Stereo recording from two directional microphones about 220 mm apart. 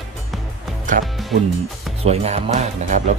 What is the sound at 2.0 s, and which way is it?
Speech, 30° right (ahead or behind).